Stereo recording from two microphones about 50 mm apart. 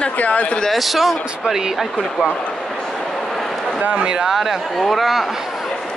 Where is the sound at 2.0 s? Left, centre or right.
Centre.